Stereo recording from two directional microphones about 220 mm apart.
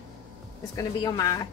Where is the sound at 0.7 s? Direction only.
15° left (ahead or behind).